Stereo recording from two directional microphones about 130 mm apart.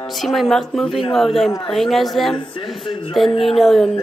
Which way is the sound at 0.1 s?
Centre (ahead or behind).